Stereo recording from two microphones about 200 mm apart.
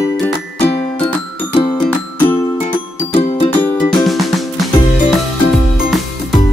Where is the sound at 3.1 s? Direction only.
30° left (ahead or behind).